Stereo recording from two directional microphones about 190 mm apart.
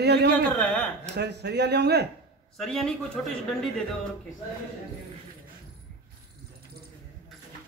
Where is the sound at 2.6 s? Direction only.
Centre (ahead or behind).